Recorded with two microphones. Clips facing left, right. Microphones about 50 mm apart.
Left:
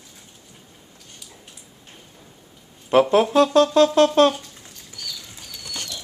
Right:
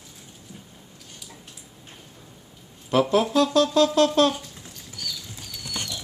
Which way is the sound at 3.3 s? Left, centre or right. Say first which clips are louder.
Left 4 dB; left.